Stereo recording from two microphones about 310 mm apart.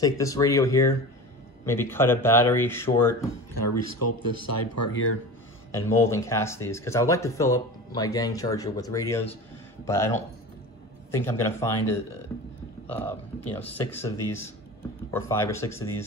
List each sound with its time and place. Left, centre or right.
0.0 s speech: centre
3.9 s speech: left
5.7 s speech: centre
13.6 s speech: centre